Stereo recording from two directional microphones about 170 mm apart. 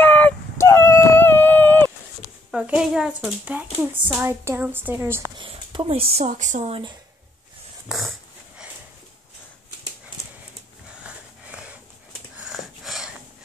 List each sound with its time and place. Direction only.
0.0 s a sound: 10° left (ahead or behind)
2.5 s a woman's voice: 5° right (ahead or behind)
5.4 s speech: 30° right (ahead or behind); by 6.7 s 45° right (ahead or behind)
7.9 s speech: 5° right (ahead or behind)
11.1 s sniff: 5° right (ahead or behind)
12.4 s a sound: 5° right (ahead or behind)